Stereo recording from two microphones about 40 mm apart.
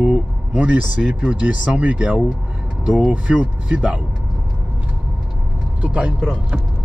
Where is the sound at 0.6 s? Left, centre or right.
Right.